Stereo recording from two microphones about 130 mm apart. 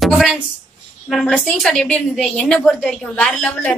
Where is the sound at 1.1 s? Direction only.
Centre (ahead or behind).